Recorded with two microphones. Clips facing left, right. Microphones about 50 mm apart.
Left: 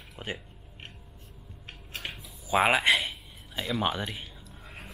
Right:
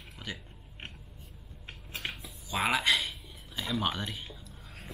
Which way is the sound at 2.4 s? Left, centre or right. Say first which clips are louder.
Left 5 dB; left.